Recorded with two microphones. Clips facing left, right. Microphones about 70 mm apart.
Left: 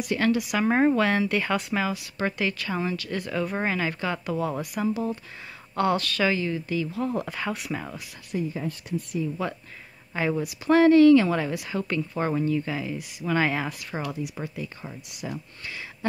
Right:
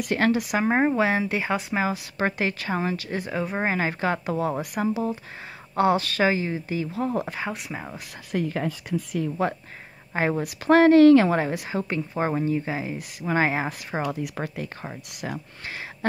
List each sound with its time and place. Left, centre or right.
0.1 s speech: right
0.6 s a woman's voice: centre
7.3 s speech: centre
8.3 s speech: right
10.1 s a woman's voice: right
11.9 s speech: right
14.2 s speech: right